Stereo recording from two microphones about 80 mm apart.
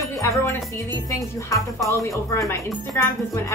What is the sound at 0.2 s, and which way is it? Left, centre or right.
Music, left.